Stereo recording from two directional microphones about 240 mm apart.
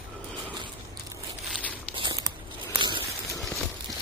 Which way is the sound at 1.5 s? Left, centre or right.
Centre.